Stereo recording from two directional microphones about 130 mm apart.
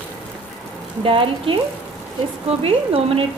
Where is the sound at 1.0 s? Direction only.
40° right (ahead or behind).